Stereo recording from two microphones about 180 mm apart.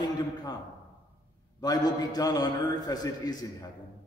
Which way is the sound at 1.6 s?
20° left (ahead or behind).